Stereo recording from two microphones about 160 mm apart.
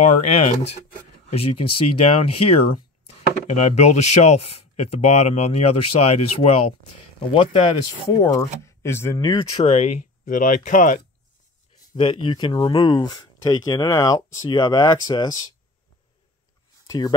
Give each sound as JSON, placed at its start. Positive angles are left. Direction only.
{"t": 0.0, "sound": "speech", "side_deg": 45}
{"t": 8.2, "sound": "speech", "side_deg": 20}
{"t": 9.7, "sound": "speech", "side_deg": 40}
{"t": 10.2, "sound": "speech", "side_deg": 55}
{"t": 11.9, "sound": "speech", "side_deg": 30}
{"t": 16.8, "sound": "a sound", "side_deg": 25}